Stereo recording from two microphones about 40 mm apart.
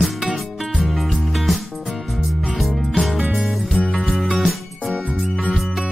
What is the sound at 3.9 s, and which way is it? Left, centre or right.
Music, centre.